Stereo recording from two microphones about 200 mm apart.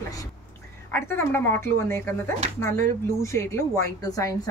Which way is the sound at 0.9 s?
10° left (ahead or behind).